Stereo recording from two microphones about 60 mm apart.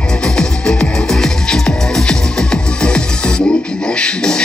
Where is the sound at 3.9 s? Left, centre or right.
Centre.